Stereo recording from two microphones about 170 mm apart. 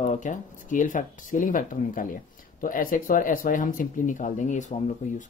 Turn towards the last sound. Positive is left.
turn(degrees=45)  # may be behind; listen again after turning